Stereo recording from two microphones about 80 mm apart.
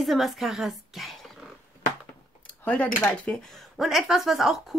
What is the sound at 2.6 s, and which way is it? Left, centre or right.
Speech, centre.